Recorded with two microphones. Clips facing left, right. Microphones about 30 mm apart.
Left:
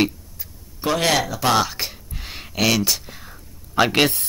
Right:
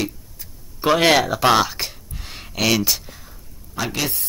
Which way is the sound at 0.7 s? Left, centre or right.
Centre.